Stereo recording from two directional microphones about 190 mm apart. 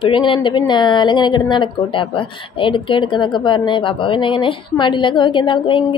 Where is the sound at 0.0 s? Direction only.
25° left (ahead or behind).